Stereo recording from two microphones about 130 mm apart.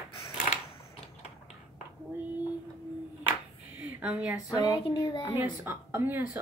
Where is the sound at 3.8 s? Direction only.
10° right (ahead or behind).